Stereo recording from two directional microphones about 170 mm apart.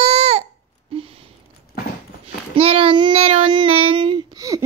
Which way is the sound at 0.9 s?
35° right (ahead or behind).